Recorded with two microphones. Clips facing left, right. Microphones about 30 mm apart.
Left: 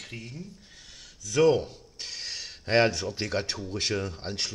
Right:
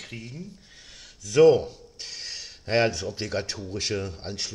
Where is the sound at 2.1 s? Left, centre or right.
Centre.